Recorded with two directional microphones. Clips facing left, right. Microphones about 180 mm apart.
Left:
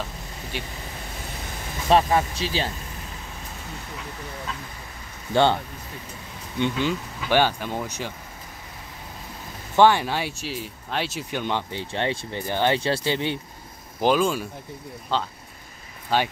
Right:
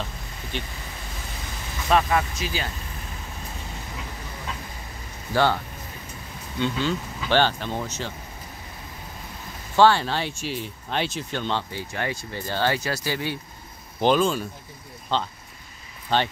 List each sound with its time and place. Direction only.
0.0 s vehicle: 10° left (ahead or behind)
1.9 s speech: 30° left (ahead or behind)
5.3 s speech: 20° left (ahead or behind)
6.6 s speech: 15° left (ahead or behind)
9.8 s speech: 15° left (ahead or behind)
11.8 s speech: 25° left (ahead or behind)
14.0 s speech: 5° left (ahead or behind)